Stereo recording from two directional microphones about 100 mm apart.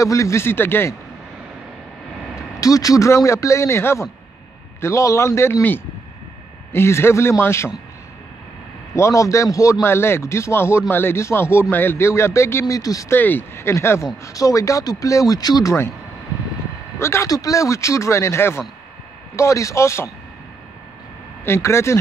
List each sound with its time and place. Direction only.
0.0 s a man's voice: 30° left (ahead or behind)
2.6 s a man's voice: 35° left (ahead or behind)
8.9 s a man's voice: 30° left (ahead or behind)
13.1 s a man's voice: 20° left (ahead or behind); by 15.7 s 40° left (ahead or behind)
17.0 s a man's voice: 25° left (ahead or behind)
21.5 s a man's voice: 25° left (ahead or behind)